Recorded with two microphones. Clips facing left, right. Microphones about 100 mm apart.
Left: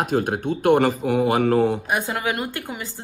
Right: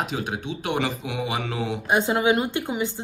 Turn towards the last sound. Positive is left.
turn(degrees=-20)  # may be behind; listen again after turning